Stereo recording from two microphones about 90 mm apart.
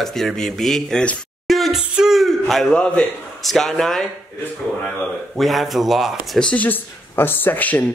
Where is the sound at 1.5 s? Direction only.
Centre (ahead or behind).